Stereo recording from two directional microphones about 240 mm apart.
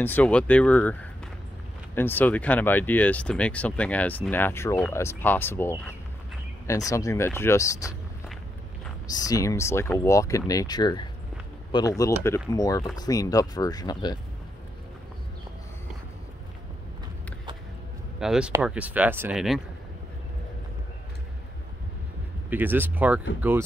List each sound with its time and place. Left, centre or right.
0.0 s speech: centre
2.0 s speech: centre
6.9 s speech: centre
9.0 s speech: centre
18.2 s speech: centre
22.5 s speech: centre